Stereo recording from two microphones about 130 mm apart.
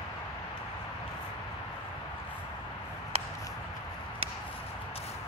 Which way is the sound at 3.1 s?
50° right (ahead or behind).